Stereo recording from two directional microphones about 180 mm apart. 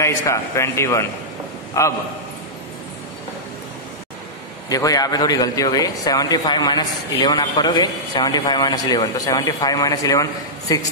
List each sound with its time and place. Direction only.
0.0 s a man's voice: 15° left (ahead or behind)
4.6 s a man's voice: 20° left (ahead or behind)